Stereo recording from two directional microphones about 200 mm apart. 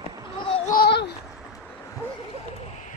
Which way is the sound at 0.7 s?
50° left (ahead or behind).